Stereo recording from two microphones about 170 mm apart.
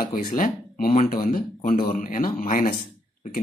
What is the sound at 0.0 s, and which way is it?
Speech, 55° left (ahead or behind).